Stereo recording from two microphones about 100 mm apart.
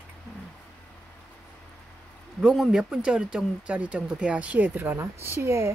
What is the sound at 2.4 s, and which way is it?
Speech, 5° right (ahead or behind).